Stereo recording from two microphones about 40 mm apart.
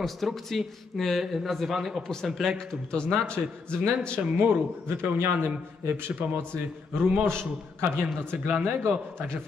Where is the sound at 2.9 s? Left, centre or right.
Left.